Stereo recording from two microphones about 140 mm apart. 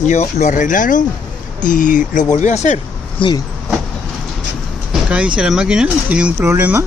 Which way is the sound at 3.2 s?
35° left (ahead or behind).